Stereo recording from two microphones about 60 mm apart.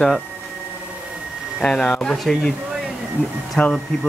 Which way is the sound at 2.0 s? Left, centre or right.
Centre.